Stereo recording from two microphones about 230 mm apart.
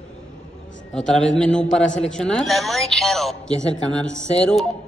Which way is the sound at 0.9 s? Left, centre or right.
Centre.